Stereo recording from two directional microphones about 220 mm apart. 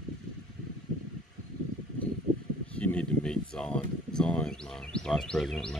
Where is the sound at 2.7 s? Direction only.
5° left (ahead or behind).